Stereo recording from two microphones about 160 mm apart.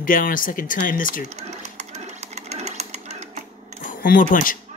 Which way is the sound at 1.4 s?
45° right (ahead or behind).